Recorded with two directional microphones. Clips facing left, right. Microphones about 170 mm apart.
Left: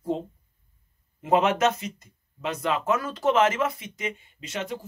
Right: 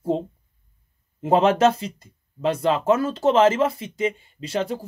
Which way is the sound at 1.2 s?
30° right (ahead or behind).